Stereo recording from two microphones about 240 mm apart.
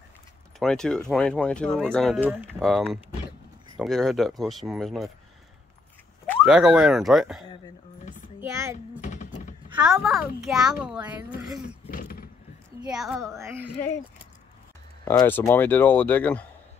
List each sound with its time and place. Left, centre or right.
0.6 s speech: centre
6.2 s speech: centre
8.4 s a child's voice: centre
9.0 s a sound: left
9.8 s speech: centre
11.9 s vehicle: left
12.8 s a child's voice: centre
15.0 s speech: centre